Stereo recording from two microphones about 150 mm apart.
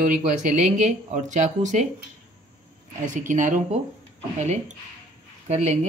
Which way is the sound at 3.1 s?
60° right (ahead or behind).